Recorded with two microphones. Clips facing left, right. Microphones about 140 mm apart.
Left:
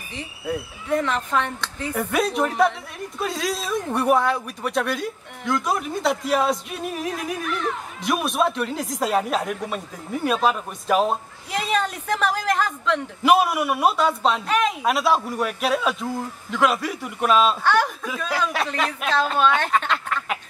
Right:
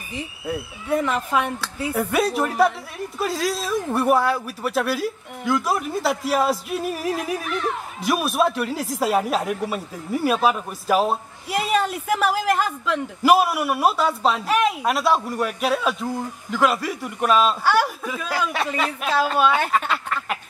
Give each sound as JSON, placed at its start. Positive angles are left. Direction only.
{"t": 0.1, "sound": "speech", "side_deg": -10}